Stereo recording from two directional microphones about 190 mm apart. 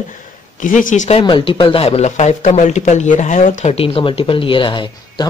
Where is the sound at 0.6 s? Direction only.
45° left (ahead or behind).